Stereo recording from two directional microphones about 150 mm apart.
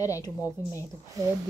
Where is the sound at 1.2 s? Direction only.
20° right (ahead or behind).